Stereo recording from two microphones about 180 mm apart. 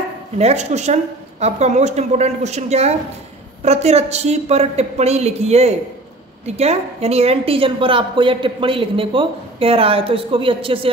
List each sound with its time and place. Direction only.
0.4 s a woman's voice: 35° right (ahead or behind)